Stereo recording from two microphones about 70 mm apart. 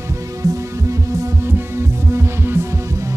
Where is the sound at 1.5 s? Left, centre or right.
Right.